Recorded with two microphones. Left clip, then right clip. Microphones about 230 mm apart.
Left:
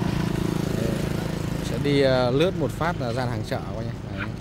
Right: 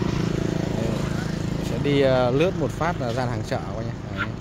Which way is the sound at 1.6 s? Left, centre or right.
Centre.